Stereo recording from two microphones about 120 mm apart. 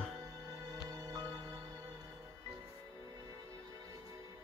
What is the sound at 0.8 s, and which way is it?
Music, 30° right (ahead or behind).